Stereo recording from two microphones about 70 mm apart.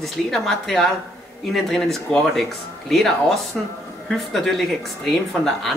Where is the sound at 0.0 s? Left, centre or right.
Centre.